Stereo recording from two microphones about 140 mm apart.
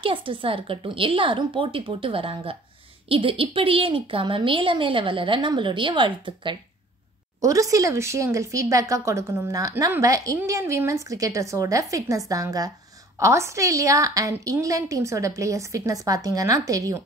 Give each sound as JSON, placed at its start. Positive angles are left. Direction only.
{"t": 0.0, "sound": "a woman's voice", "side_deg": -40}
{"t": 7.4, "sound": "speech", "side_deg": -25}